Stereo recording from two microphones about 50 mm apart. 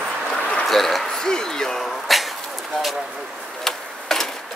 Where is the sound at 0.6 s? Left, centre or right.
Centre.